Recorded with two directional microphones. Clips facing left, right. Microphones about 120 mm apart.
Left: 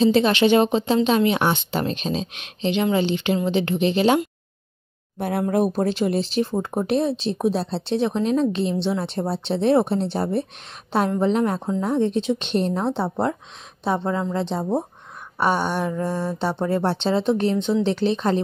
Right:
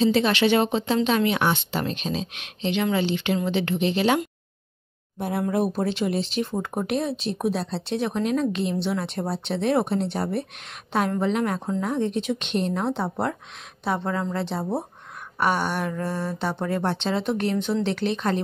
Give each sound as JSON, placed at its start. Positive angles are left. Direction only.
{"t": 0.0, "sound": "speech", "side_deg": 25}
{"t": 5.5, "sound": "speech", "side_deg": 45}